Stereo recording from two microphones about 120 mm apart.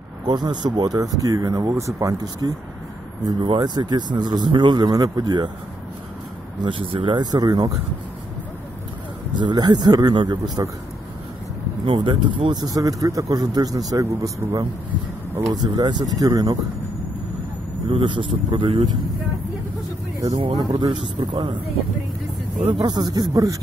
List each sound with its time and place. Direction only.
0.3 s speech: 35° right (ahead or behind)
3.4 s speech: 40° right (ahead or behind)
6.6 s speech: 45° right (ahead or behind)
9.3 s speech: 40° right (ahead or behind)
11.8 s speech: 45° right (ahead or behind)
17.8 s a man's voice: 45° right (ahead or behind)
20.5 s speech: 40° right (ahead or behind)
22.8 s speech: 30° right (ahead or behind)